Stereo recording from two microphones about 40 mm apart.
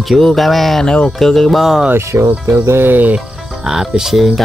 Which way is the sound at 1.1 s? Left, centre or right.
Centre.